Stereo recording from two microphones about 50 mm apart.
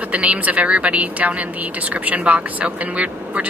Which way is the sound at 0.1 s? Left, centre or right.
Right.